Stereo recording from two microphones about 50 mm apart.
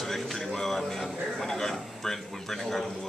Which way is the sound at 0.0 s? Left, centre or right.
Centre.